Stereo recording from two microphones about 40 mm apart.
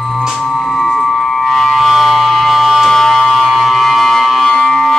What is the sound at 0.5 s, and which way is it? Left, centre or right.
Music, centre.